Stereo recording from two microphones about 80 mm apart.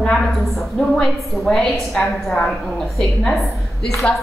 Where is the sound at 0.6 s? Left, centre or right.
Centre.